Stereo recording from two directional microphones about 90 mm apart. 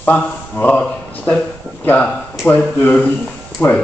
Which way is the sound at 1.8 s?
20° left (ahead or behind).